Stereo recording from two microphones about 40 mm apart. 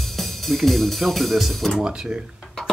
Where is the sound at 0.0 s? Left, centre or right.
Centre.